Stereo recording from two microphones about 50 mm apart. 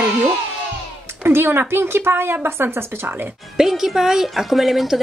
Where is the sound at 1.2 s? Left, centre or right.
Right.